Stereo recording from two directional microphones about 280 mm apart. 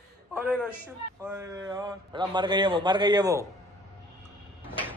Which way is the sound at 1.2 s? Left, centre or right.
Centre.